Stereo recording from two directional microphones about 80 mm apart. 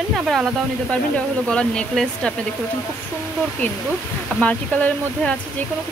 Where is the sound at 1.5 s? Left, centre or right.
Centre.